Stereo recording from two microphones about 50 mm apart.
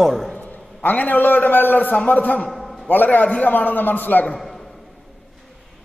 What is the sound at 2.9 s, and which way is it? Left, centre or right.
A man's voice, left.